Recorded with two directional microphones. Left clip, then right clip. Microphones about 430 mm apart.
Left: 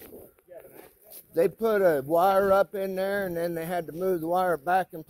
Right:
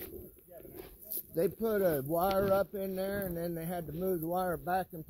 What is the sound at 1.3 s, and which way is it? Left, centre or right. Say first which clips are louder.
Speech: left 8 dB; left.